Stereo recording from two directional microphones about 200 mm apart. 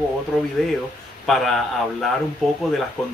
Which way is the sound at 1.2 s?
Centre (ahead or behind).